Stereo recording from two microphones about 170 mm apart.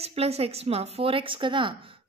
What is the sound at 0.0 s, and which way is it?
A woman's voice, 35° right (ahead or behind).